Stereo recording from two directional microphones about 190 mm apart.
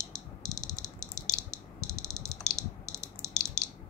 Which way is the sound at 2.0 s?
20° left (ahead or behind).